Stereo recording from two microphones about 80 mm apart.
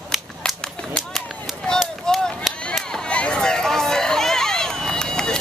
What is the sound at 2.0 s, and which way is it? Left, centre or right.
Chop, centre.